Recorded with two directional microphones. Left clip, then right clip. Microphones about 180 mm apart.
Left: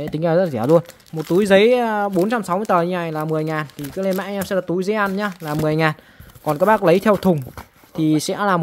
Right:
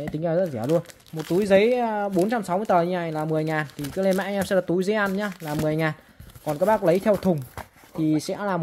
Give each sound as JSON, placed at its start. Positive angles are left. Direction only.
{"t": 0.1, "sound": "speech", "side_deg": 40}
{"t": 5.4, "sound": "speech", "side_deg": 35}